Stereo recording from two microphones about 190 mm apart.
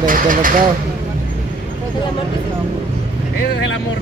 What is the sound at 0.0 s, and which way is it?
Speech, 45° right (ahead or behind).